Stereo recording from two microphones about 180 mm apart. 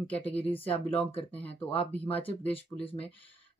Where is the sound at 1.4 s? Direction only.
30° left (ahead or behind).